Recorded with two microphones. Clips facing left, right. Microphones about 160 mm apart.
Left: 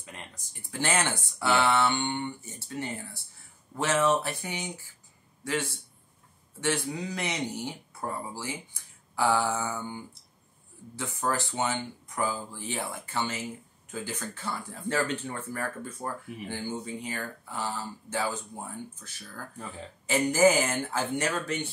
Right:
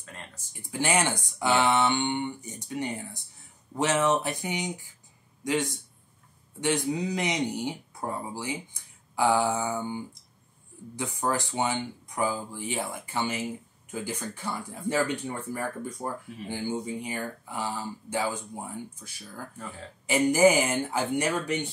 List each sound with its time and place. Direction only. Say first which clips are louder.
0.5 s speech: right 2 dB; 10° right (ahead or behind)